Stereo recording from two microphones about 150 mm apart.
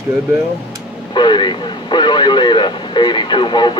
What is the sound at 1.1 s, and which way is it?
Radio, 30° left (ahead or behind).